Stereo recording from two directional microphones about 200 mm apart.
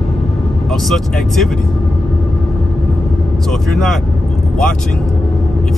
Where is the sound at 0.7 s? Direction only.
Centre (ahead or behind).